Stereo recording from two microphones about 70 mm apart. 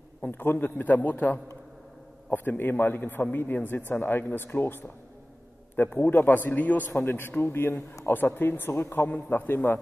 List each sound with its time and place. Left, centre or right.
0.2 s a man's voice: left
9.1 s a man's voice: left